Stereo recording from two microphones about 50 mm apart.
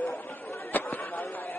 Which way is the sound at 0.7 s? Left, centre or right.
Left.